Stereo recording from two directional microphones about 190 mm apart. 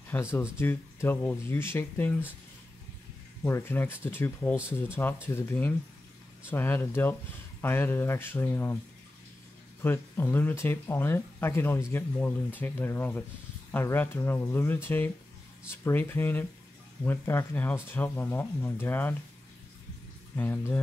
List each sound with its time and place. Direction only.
0.1 s speech: 15° left (ahead or behind)
3.4 s speech: 10° left (ahead or behind)
9.8 s speech: 10° left (ahead or behind)
20.3 s speech: 10° left (ahead or behind)